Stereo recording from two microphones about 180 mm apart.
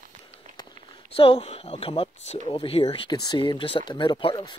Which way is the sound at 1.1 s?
30° left (ahead or behind).